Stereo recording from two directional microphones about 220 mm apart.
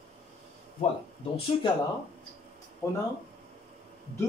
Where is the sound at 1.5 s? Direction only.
25° left (ahead or behind).